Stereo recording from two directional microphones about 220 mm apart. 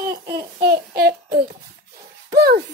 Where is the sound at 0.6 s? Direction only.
45° right (ahead or behind).